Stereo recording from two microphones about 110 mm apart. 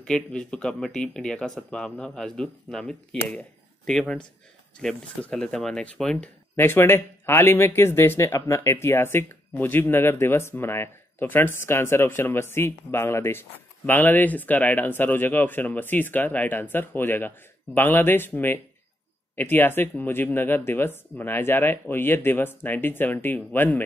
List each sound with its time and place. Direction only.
0.0 s speech: 5° left (ahead or behind)
6.5 s speech: 20° left (ahead or behind)